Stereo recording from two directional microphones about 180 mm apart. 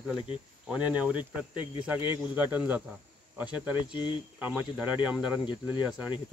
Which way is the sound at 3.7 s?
25° left (ahead or behind).